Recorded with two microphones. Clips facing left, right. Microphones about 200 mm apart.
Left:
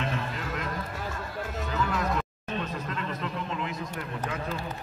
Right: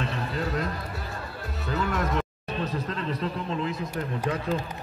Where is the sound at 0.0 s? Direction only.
35° right (ahead or behind).